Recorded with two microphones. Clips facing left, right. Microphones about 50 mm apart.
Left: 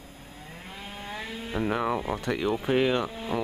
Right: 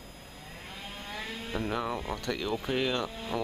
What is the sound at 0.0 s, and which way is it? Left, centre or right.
Speech, centre.